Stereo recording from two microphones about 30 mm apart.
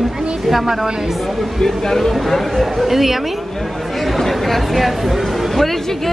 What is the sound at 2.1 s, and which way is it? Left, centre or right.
Speech, centre.